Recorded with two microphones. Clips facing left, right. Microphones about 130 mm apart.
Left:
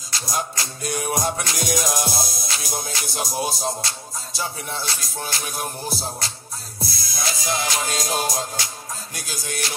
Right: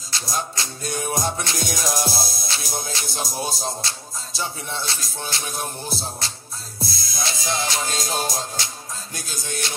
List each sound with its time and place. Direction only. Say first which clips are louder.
0.4 s music: left 2 dB; 30° right (ahead or behind)